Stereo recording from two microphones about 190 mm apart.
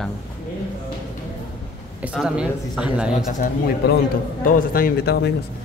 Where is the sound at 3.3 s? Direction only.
50° left (ahead or behind).